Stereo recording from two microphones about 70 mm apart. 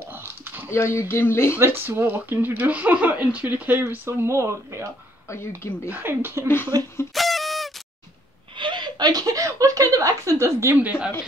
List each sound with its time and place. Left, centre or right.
0.1 s a sound: right
0.7 s speech: left
1.6 s speech: right
5.9 s speech: right
6.4 s speech: left
7.2 s honk: centre
8.7 s a woman's voice: right
10.8 s speech: centre